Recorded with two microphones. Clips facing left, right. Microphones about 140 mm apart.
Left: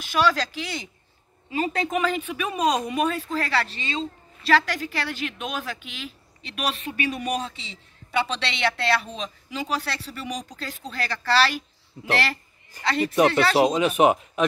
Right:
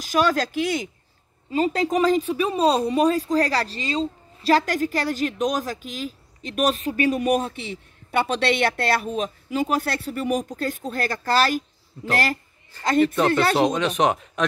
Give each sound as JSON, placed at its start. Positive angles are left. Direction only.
{"t": 0.0, "sound": "speech", "side_deg": -45}
{"t": 1.5, "sound": "speech", "side_deg": -35}
{"t": 13.0, "sound": "speech", "side_deg": 15}
{"t": 13.3, "sound": "speech", "side_deg": -50}
{"t": 13.6, "sound": "speech", "side_deg": 5}